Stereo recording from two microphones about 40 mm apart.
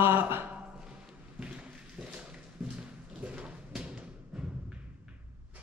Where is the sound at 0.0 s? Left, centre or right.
Right.